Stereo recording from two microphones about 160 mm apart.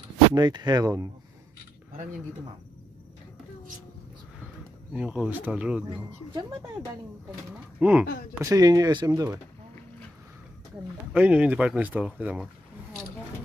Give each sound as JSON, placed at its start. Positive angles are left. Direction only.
{"t": 0.3, "sound": "speech", "side_deg": -25}
{"t": 4.9, "sound": "speech", "side_deg": -5}
{"t": 7.8, "sound": "speech", "side_deg": -10}
{"t": 8.4, "sound": "speech", "side_deg": -20}
{"t": 11.1, "sound": "speech", "side_deg": -10}